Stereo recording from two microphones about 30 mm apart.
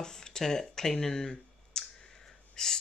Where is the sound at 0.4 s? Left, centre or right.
Centre.